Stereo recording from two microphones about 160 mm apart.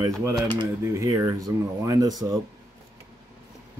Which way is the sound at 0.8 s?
20° right (ahead or behind).